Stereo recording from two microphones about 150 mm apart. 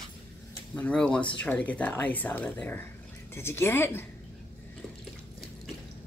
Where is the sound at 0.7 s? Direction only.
10° left (ahead or behind).